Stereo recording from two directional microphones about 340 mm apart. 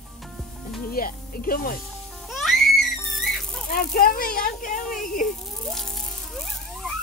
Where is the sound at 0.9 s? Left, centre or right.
Left.